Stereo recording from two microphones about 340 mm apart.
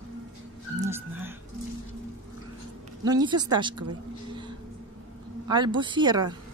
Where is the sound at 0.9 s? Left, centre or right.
Centre.